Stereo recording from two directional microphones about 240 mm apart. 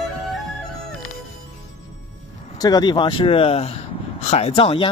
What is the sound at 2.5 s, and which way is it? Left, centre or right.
Speech, centre.